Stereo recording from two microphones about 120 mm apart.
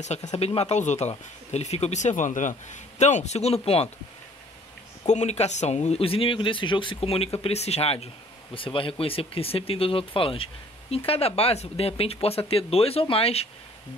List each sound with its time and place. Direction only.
0.0 s speech: 70° left (ahead or behind)
5.0 s speech: 70° left (ahead or behind)
8.5 s speech: 45° left (ahead or behind)